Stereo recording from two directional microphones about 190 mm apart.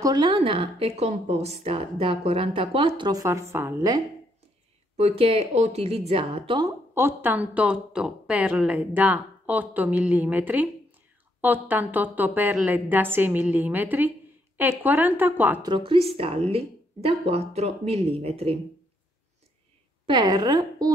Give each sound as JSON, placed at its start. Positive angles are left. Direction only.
{"t": 0.0, "sound": "a woman's voice", "side_deg": -25}
{"t": 4.9, "sound": "speech", "side_deg": -30}
{"t": 7.0, "sound": "a woman's voice", "side_deg": -10}
{"t": 15.7, "sound": "a woman's voice", "side_deg": -25}
{"t": 20.1, "sound": "a woman's voice", "side_deg": -25}